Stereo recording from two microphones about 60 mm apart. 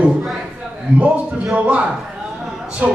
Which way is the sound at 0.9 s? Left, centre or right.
Right.